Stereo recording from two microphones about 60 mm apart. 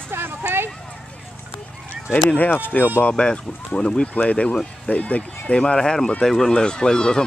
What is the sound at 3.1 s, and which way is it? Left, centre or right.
Speech, centre.